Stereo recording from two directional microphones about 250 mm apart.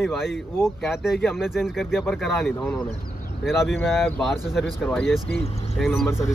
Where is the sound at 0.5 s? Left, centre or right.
Centre.